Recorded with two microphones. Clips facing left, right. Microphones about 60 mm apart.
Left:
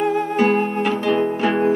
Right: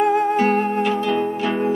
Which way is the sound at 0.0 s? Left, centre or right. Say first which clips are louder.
Right 3 dB; centre.